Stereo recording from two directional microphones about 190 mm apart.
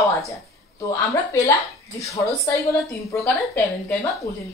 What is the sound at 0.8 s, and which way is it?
A woman's voice, 15° left (ahead or behind).